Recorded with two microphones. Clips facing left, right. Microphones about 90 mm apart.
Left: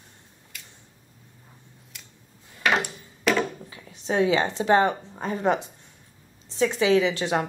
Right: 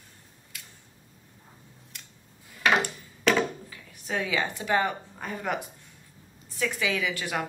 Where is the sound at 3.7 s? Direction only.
30° left (ahead or behind).